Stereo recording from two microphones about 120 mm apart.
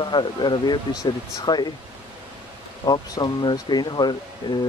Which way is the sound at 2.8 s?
35° left (ahead or behind).